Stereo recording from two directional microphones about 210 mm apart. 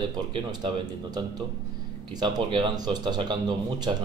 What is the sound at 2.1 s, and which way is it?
Speech, 20° right (ahead or behind).